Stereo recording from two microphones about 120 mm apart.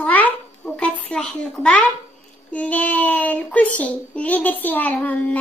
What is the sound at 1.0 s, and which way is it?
A child's voice, 5° left (ahead or behind).